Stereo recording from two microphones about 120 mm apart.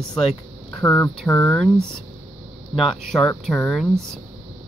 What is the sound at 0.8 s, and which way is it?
Speech, 20° left (ahead or behind).